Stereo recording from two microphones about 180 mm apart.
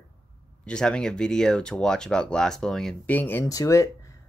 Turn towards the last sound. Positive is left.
turn(degrees=20)  # may be behind; listen again after turning